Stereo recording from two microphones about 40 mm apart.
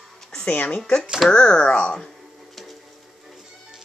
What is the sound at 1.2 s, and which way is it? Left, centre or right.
Speech, left.